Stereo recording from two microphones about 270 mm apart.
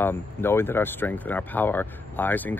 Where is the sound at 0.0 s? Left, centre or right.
Centre.